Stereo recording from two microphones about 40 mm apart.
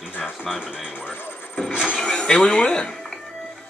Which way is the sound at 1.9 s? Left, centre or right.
Left.